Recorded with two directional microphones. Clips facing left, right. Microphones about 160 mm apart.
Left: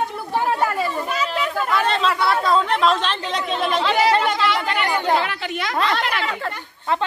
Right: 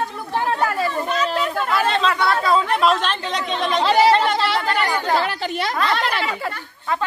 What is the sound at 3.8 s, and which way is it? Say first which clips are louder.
Chatter: right 5 dB; 35° right (ahead or behind).